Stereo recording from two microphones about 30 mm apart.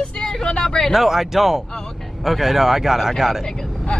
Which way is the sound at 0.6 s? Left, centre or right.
Centre.